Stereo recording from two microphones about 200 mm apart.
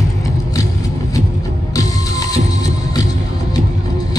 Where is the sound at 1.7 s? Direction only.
15° left (ahead or behind).